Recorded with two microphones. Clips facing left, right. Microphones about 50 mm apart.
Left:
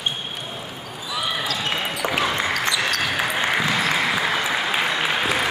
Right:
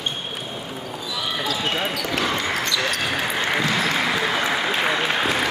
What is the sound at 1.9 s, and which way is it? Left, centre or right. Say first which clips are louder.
Speech: left 1 dB; centre.